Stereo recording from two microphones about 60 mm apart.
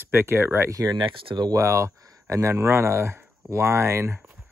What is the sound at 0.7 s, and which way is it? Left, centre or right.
Speech, right.